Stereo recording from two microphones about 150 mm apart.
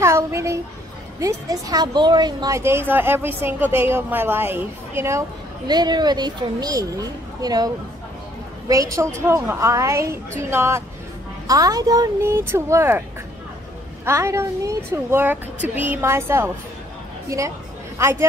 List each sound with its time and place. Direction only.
0.0 s a woman's voice: 20° right (ahead or behind)
5.7 s a woman's voice: 25° right (ahead or behind)
14.0 s a woman's voice: 15° right (ahead or behind)